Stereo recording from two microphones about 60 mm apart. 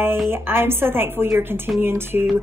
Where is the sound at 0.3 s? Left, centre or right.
Right.